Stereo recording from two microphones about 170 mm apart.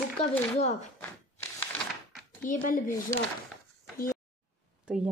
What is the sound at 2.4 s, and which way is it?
Speech, 55° left (ahead or behind).